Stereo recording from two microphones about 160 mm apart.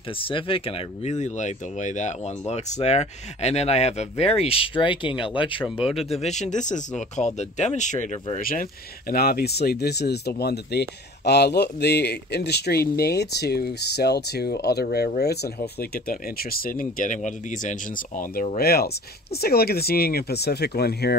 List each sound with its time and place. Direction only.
0.2 s speech: 35° left (ahead or behind)
5.8 s speech: 5° right (ahead or behind)
6.2 s speech: 45° left (ahead or behind)
8.5 s speech: 65° left (ahead or behind)
18.6 s speech: 75° left (ahead or behind)